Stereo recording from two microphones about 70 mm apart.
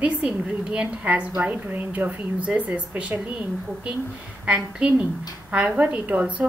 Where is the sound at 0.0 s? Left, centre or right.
Centre.